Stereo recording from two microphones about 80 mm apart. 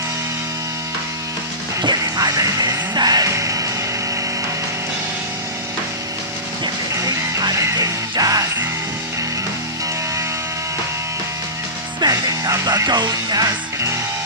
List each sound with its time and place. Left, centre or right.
1.8 s music: right
7.0 s music: right
12.0 s music: right